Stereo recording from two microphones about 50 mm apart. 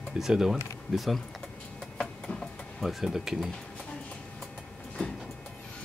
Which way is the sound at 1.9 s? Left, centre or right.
Centre.